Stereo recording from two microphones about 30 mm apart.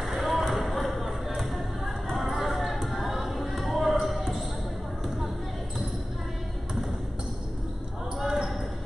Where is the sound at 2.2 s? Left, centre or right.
Centre.